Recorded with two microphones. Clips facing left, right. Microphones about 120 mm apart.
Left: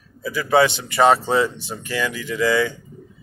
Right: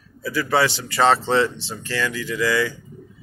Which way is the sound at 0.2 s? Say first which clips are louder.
Left 3 dB; 20° left (ahead or behind).